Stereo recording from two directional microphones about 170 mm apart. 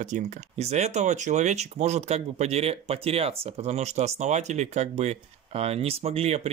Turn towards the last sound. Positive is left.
turn(degrees=-40)  # may be behind; listen again after turning